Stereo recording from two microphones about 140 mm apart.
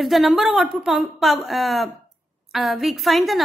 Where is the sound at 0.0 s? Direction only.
Centre (ahead or behind).